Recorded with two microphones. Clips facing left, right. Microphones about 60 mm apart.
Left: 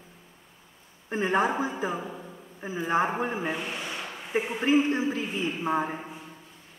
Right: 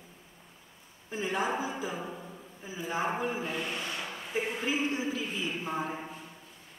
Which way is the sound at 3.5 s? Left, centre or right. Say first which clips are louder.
Left 1 dB; centre.